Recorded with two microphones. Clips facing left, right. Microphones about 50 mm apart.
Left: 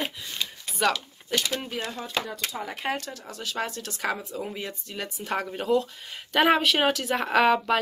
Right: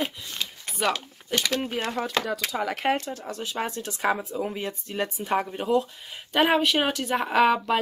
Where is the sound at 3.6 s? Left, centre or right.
Right.